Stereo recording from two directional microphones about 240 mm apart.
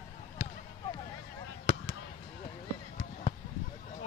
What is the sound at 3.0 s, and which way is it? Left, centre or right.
Basketball bounce, left.